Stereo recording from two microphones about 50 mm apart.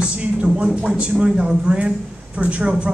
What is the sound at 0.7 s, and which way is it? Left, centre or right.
A man's voice, centre.